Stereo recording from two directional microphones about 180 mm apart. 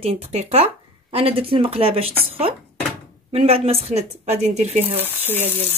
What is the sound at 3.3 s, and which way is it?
Speech, 35° right (ahead or behind).